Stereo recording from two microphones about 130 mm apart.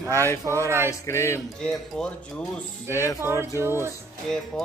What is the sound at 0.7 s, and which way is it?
Speech, 20° right (ahead or behind).